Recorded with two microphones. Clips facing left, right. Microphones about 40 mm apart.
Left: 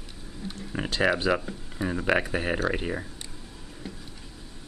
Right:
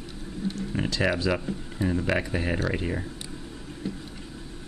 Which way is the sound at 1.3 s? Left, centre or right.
Centre.